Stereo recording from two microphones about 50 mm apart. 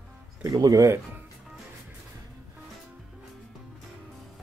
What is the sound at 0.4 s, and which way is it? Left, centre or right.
Speech, right.